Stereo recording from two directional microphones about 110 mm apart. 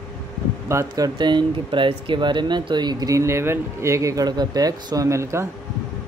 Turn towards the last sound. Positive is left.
turn(degrees=-25)  # may be behind; listen again after turning